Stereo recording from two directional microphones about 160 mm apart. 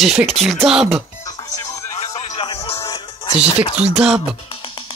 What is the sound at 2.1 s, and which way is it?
Music, 35° left (ahead or behind).